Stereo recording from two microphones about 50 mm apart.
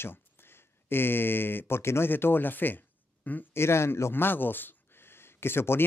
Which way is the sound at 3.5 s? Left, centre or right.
Left.